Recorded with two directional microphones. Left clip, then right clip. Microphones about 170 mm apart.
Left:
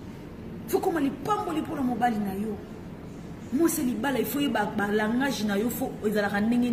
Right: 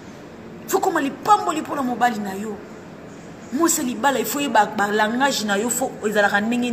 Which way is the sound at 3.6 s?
15° left (ahead or behind).